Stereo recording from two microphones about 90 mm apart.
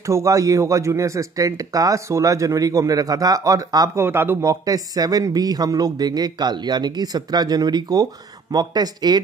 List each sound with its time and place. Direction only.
0.0 s speech: 35° right (ahead or behind)
4.0 s speech: 25° right (ahead or behind); by 9.2 s 50° right (ahead or behind)